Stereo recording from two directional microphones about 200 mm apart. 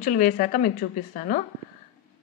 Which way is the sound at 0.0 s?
40° left (ahead or behind).